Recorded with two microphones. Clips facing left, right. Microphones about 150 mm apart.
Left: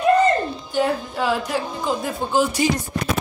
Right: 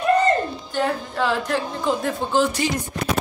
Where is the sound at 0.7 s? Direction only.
10° left (ahead or behind).